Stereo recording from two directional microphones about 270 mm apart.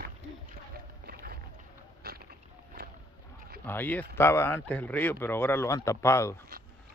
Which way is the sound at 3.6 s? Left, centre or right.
Centre.